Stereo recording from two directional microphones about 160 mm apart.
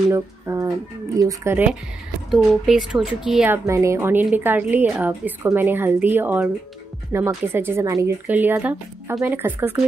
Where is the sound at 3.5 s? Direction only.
20° right (ahead or behind).